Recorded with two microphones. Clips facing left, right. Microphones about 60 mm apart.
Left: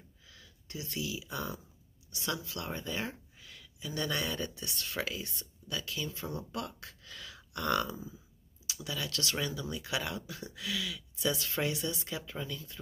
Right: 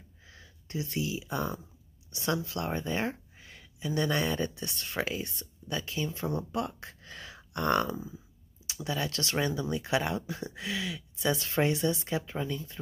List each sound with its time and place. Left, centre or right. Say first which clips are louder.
0.3 s speech: right 7 dB; right